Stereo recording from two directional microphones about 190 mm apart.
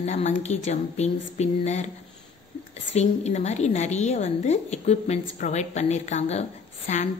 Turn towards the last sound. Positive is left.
turn(degrees=35)  # may be behind; listen again after turning